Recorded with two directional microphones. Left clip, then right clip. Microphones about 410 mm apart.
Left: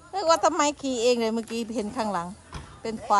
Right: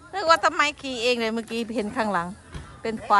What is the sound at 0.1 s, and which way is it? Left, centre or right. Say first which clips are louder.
A woman's voice: right 2 dB; centre.